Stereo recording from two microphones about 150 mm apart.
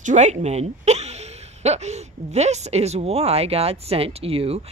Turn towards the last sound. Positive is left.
turn(degrees=-40)  # may be behind; listen again after turning